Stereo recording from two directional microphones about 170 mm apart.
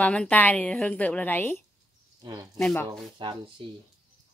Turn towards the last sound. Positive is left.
turn(degrees=-30)  # may be behind; listen again after turning